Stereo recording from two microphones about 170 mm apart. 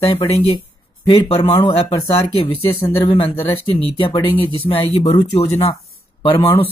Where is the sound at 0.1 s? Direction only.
30° left (ahead or behind).